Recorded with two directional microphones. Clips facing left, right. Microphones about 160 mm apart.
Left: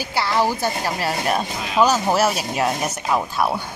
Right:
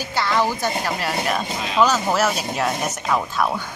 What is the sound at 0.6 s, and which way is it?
Speech, 30° left (ahead or behind).